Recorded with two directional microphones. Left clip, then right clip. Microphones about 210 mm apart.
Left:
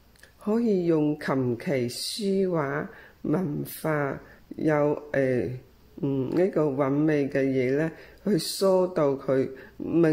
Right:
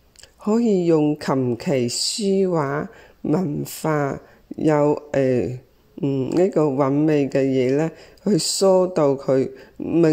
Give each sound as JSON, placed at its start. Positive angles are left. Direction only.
{"t": 0.4, "sound": "speech", "side_deg": -30}